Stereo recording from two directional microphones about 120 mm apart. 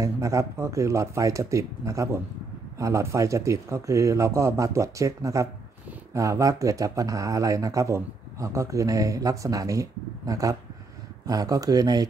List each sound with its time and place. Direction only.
0.0 s speech: 25° right (ahead or behind)